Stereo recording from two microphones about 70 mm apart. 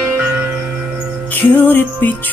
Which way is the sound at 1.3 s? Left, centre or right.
Left.